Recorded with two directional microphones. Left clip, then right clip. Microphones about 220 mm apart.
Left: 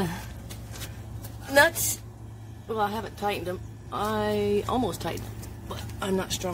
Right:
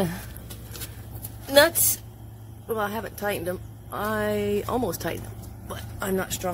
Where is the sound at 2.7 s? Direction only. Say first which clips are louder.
Even; 30° right (ahead or behind).